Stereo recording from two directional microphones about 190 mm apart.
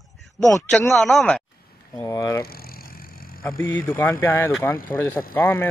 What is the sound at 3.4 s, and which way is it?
Speech, 5° left (ahead or behind).